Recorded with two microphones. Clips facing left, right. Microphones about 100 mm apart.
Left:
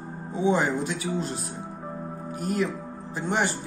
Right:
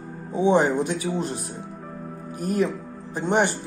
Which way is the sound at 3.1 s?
25° right (ahead or behind).